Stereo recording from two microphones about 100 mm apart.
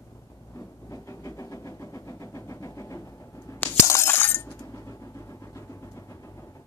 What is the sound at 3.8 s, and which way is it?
Glass, 25° left (ahead or behind).